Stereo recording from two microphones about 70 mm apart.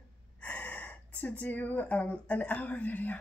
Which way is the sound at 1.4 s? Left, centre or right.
Left.